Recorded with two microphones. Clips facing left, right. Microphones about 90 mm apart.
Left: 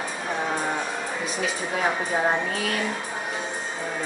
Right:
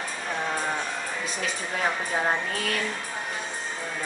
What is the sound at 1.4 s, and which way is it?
Speech, 10° left (ahead or behind).